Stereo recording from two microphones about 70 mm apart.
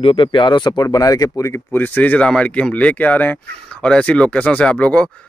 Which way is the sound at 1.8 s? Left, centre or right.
Left.